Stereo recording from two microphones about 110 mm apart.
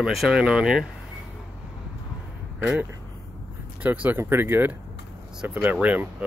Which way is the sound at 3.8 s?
15° right (ahead or behind).